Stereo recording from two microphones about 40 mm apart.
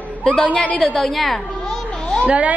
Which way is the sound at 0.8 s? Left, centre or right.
Centre.